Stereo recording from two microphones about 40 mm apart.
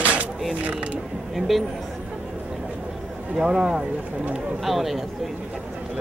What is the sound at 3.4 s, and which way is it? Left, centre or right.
Speech, centre.